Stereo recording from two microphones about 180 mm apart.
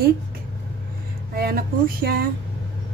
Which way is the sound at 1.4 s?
55° right (ahead or behind).